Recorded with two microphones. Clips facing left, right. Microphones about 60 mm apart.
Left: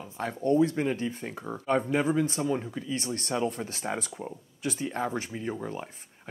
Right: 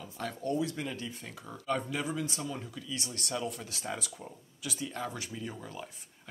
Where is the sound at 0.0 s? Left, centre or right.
Left.